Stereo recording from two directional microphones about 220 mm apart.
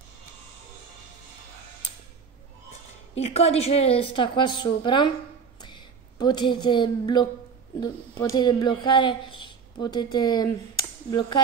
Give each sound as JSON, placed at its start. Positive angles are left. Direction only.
{"t": 3.2, "sound": "speech", "side_deg": 30}